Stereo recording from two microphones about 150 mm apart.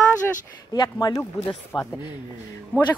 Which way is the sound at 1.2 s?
10° left (ahead or behind).